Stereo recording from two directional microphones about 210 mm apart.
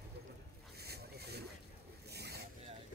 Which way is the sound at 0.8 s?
50° right (ahead or behind).